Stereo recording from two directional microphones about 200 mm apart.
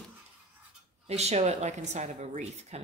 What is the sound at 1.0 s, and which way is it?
Speech, 30° right (ahead or behind).